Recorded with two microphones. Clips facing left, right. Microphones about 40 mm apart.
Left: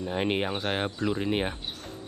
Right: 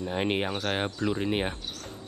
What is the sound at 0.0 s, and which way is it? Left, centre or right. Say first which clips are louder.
Speech: even; centre.